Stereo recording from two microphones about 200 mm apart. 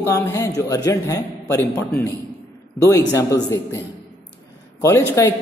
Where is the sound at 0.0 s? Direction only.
15° left (ahead or behind).